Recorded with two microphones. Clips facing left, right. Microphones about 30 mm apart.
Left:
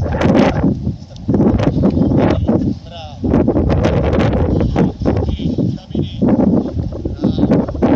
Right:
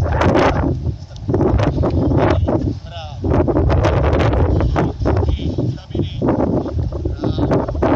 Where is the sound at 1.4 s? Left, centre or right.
Centre.